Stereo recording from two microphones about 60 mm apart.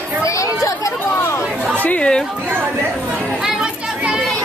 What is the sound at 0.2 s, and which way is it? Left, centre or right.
Chatter, left.